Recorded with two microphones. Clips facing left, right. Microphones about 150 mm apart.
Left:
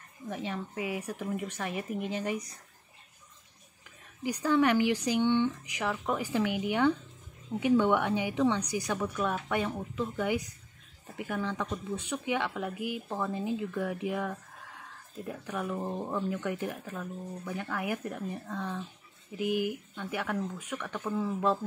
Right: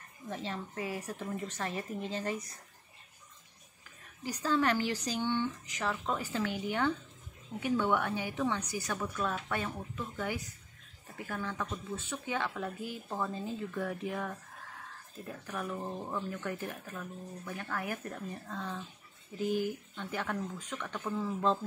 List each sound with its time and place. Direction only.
0.3 s a woman's voice: 15° left (ahead or behind)
4.2 s a woman's voice: 15° left (ahead or behind)